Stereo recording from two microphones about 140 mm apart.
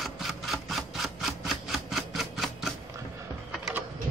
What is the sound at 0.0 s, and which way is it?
Rub, centre (ahead or behind).